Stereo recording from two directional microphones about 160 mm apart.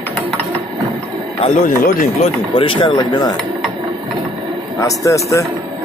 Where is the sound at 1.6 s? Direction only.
55° left (ahead or behind).